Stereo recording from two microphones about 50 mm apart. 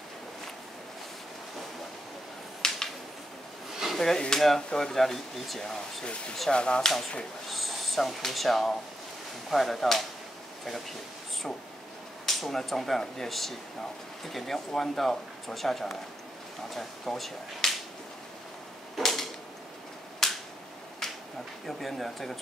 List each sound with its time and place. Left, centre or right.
2.6 s a sound: centre
3.8 s a sound: centre
4.3 s speech: centre
6.5 s speech: centre
7.4 s speech: centre
12.3 s speech: centre
18.9 s a sound: centre
20.2 s cap gun: centre
21.0 s finger snapping: centre
21.6 s speech: centre